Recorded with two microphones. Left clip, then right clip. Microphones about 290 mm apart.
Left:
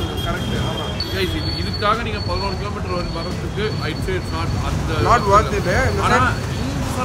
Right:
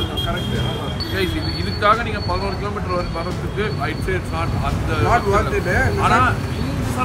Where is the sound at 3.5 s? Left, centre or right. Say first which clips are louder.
Right 1 dB; centre.